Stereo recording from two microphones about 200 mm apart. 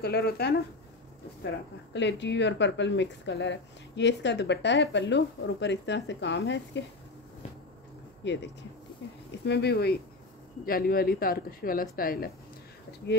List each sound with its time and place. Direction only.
0.0 s speech: 50° left (ahead or behind)
2.0 s a woman's voice: 60° left (ahead or behind)
8.2 s a woman's voice: 60° left (ahead or behind); by 12.3 s 45° left (ahead or behind)